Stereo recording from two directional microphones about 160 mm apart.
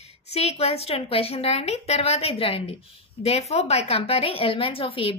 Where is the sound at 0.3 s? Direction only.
40° left (ahead or behind).